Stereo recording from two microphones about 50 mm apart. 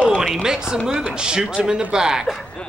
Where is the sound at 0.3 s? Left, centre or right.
Centre.